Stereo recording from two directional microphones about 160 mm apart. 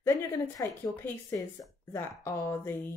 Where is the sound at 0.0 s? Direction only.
20° left (ahead or behind).